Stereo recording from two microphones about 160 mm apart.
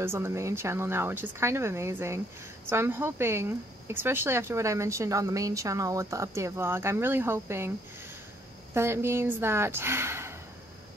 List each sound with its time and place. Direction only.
0.0 s speech: 15° right (ahead or behind)
8.7 s speech: 15° right (ahead or behind)